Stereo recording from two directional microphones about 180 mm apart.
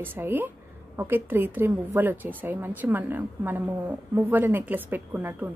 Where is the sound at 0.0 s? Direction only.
10° right (ahead or behind).